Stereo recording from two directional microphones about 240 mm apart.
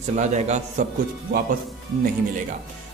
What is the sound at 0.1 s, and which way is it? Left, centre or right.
Speech, right.